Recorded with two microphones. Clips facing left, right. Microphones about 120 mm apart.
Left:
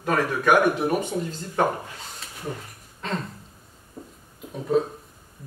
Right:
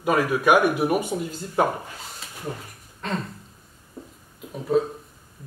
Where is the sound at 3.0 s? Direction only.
Centre (ahead or behind).